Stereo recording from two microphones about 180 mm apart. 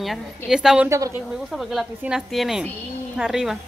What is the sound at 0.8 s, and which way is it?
Speech, 15° right (ahead or behind).